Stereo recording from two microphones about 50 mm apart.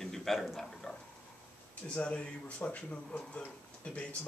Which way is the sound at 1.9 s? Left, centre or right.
Left.